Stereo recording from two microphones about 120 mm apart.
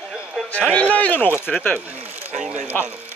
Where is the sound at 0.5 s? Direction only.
10° left (ahead or behind).